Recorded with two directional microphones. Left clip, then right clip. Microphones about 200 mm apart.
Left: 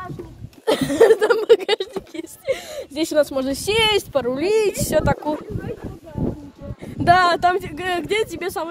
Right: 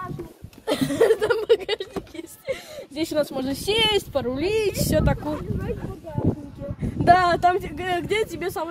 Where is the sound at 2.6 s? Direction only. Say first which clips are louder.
Left 6 dB; 45° left (ahead or behind).